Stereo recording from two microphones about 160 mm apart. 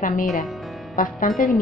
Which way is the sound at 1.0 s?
60° left (ahead or behind).